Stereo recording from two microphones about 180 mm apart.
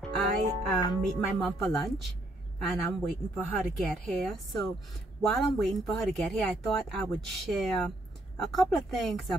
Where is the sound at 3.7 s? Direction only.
Centre (ahead or behind).